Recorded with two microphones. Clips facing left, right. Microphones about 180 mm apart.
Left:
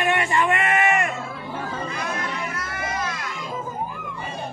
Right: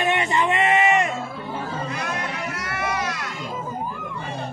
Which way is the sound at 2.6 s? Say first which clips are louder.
Right 2 dB; 75° right (ahead or behind).